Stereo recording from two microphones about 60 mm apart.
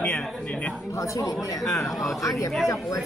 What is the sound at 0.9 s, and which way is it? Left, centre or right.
Speech, left.